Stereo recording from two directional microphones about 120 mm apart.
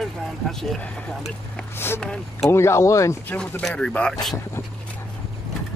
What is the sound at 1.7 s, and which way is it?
Speech, 20° left (ahead or behind).